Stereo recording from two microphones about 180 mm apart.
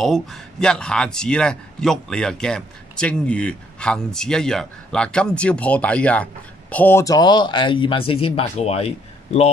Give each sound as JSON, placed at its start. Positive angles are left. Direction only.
{"t": 0.0, "sound": "a man's voice", "side_deg": 0}